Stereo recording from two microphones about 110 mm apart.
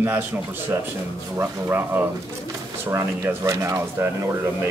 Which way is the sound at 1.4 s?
20° right (ahead or behind).